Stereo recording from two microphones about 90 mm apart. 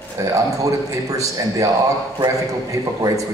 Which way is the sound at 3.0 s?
40° right (ahead or behind).